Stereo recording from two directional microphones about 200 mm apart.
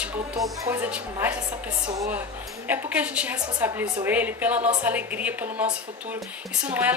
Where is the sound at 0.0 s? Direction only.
5° right (ahead or behind).